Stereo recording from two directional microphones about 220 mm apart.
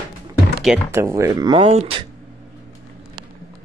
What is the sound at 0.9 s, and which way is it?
Speech, 10° right (ahead or behind).